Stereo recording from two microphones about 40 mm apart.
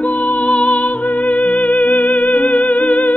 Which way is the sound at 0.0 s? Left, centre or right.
Left.